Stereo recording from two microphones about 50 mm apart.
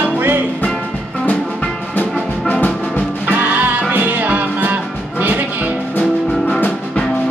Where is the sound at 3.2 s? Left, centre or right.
Right.